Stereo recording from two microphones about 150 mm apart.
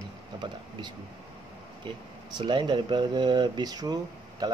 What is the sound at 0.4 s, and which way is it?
Speech, 30° right (ahead or behind).